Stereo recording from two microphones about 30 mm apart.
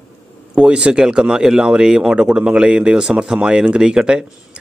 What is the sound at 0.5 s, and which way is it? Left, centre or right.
Speech, right.